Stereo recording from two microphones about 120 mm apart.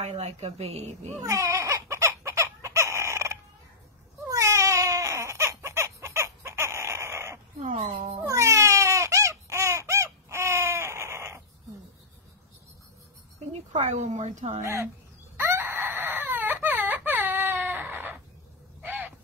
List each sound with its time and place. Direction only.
0.0 s a woman's voice: 65° right (ahead or behind)
1.2 s chicken: 25° right (ahead or behind)
4.3 s baby cry: 25° right (ahead or behind)
13.5 s speech: 75° right (ahead or behind)
14.6 s speech: 25° right (ahead or behind)
15.3 s wail: 20° right (ahead or behind)
18.8 s owl: 15° right (ahead or behind)